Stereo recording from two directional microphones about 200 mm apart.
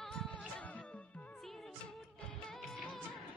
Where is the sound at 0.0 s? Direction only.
5° left (ahead or behind).